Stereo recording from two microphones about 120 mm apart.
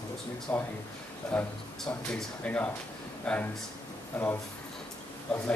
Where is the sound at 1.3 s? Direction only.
5° left (ahead or behind).